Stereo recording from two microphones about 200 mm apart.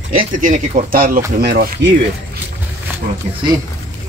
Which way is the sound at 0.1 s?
40° right (ahead or behind).